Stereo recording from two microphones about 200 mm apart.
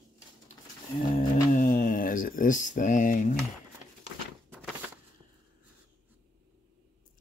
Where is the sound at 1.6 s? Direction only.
45° left (ahead or behind).